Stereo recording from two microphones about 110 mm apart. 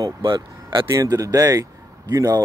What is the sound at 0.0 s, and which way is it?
Speech, 45° right (ahead or behind).